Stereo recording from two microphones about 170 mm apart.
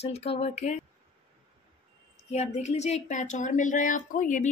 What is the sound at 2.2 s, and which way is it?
Speech, 40° left (ahead or behind).